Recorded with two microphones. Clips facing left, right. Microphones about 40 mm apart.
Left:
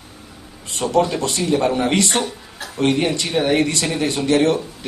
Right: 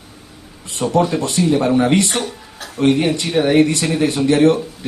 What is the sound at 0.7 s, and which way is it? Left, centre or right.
Speech, right.